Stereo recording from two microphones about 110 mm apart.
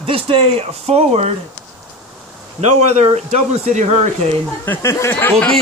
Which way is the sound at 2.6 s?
85° right.